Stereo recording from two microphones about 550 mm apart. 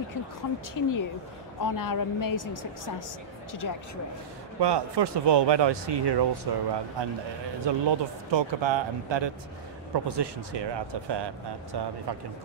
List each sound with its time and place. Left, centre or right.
0.7 s speech: left
4.6 s speech: right